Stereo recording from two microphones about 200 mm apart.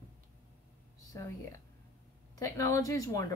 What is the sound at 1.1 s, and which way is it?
A woman's voice, 15° left (ahead or behind).